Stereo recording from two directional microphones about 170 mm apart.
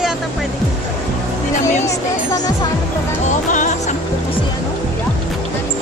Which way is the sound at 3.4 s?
45° left (ahead or behind).